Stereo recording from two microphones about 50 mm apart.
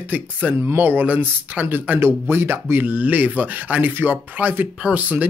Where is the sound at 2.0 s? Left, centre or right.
Right.